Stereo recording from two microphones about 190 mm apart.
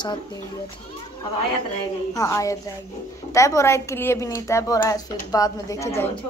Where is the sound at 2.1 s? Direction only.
15° left (ahead or behind).